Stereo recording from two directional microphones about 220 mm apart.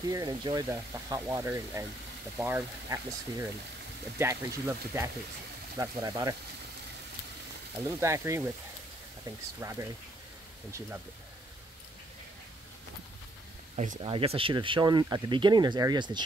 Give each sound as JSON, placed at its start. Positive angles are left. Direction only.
{"t": 0.1, "sound": "speech", "side_deg": -15}
{"t": 7.8, "sound": "speech", "side_deg": -15}
{"t": 9.6, "sound": "speech", "side_deg": -15}
{"t": 14.0, "sound": "speech", "side_deg": -25}